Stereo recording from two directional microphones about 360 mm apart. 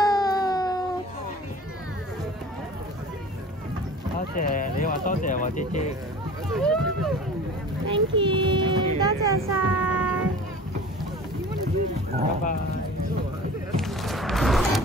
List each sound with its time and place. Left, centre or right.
0.0 s a sound: centre
4.4 s speech: left
6.5 s run: centre
7.9 s speech: centre
9.5 s child singing: centre
13.7 s a sound: centre